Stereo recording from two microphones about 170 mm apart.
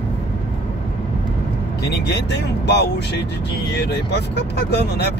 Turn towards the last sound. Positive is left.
turn(degrees=80)